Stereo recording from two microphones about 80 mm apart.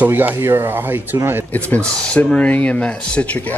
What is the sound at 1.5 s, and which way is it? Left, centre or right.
Speech, centre.